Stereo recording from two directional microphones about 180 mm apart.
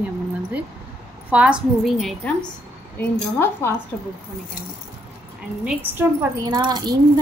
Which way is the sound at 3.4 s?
15° left (ahead or behind).